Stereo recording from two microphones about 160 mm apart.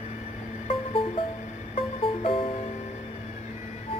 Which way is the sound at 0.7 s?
35° left (ahead or behind).